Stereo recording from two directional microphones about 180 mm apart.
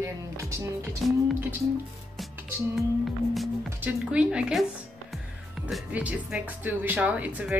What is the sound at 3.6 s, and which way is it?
Speech, 10° right (ahead or behind).